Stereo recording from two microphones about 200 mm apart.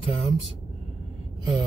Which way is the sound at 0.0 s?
30° left (ahead or behind).